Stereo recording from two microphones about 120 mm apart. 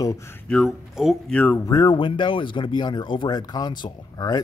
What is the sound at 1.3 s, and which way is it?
Speech, 10° left (ahead or behind).